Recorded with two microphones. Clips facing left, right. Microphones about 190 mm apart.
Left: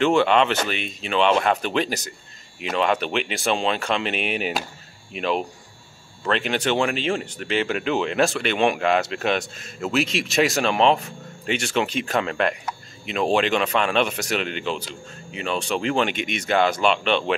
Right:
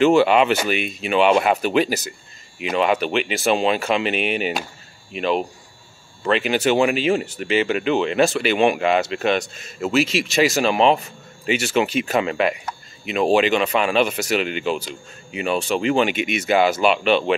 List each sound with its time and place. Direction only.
0.0 s speech: 5° right (ahead or behind)